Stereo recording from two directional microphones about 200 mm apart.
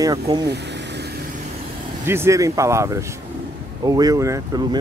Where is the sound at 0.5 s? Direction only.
60° right (ahead or behind).